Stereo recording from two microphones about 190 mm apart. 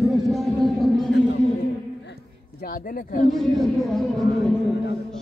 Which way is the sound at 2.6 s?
50° left (ahead or behind).